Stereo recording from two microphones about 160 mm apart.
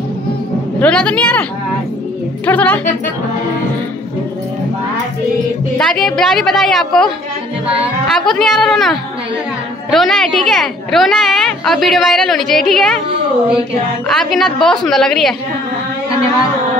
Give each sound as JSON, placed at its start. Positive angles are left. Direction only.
{"t": 0.7, "sound": "speech", "side_deg": 10}
{"t": 2.4, "sound": "speech", "side_deg": 10}
{"t": 5.8, "sound": "a woman's voice", "side_deg": 5}
{"t": 8.1, "sound": "a woman's voice", "side_deg": 0}
{"t": 14.0, "sound": "a woman's voice", "side_deg": 0}